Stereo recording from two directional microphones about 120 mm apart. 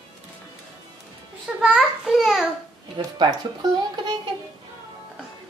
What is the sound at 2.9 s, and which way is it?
Speech, 40° right (ahead or behind).